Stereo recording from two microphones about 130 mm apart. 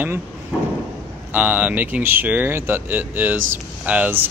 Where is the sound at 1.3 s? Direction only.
10° right (ahead or behind).